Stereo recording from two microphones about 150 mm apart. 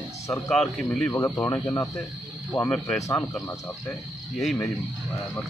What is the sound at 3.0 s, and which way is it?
Speech, 20° left (ahead or behind).